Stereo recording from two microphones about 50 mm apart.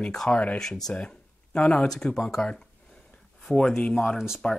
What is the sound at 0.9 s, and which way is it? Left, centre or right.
Speech, centre.